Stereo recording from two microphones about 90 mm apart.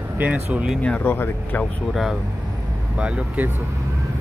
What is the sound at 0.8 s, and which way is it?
Speech, 15° left (ahead or behind).